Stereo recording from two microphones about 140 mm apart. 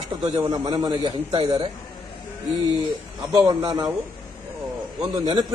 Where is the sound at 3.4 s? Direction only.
25° right (ahead or behind).